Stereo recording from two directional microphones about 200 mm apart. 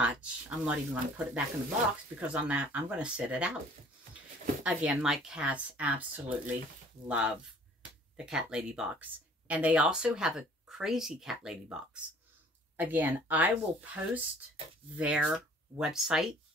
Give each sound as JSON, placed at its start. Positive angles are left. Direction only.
{"t": 0.0, "sound": "speech", "side_deg": -5}
{"t": 4.6, "sound": "speech", "side_deg": -5}